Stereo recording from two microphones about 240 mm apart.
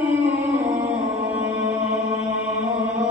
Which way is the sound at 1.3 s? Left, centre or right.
Centre.